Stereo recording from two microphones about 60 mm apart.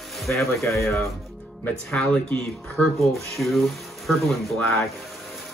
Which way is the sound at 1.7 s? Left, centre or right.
Centre.